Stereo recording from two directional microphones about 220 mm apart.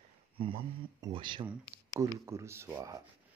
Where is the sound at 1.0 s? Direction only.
20° right (ahead or behind).